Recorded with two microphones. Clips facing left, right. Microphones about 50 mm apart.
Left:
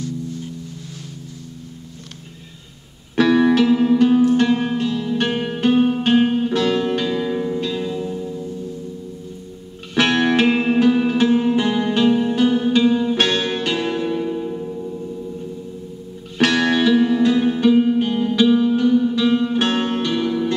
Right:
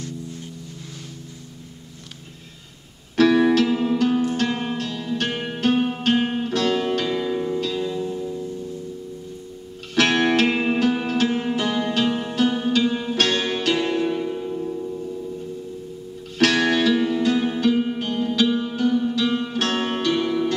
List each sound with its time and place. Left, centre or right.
3.2 s music: centre
9.9 s music: centre
11.5 s music: centre
13.1 s music: centre
13.7 s music: centre
16.3 s music: centre
20.1 s music: centre